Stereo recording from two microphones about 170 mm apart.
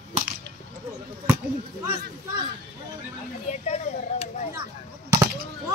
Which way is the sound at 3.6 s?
40° left (ahead or behind).